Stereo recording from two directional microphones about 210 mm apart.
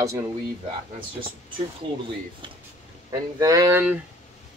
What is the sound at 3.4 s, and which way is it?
Speech, 15° right (ahead or behind).